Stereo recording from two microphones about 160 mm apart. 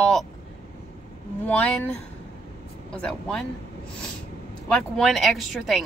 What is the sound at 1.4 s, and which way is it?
Speech, 10° left (ahead or behind).